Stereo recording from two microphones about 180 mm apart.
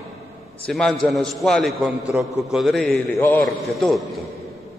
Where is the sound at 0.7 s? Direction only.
5° left (ahead or behind).